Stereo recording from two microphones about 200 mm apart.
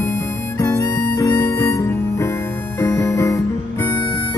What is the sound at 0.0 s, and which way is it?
Harmonica, 15° left (ahead or behind).